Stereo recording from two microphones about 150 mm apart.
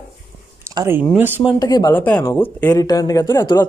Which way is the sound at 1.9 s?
10° left (ahead or behind).